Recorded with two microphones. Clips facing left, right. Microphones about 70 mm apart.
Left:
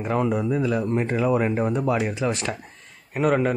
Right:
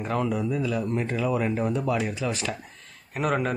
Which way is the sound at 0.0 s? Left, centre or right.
Left.